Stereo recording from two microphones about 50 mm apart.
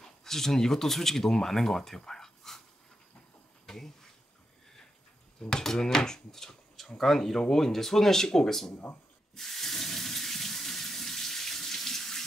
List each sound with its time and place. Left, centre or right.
0.0 s speech: centre
3.6 s a sound: centre
5.4 s speech: centre
9.3 s water: centre